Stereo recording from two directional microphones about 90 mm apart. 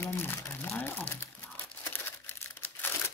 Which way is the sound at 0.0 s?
25° left (ahead or behind).